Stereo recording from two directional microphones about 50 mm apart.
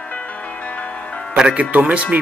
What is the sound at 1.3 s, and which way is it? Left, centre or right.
Speech, centre.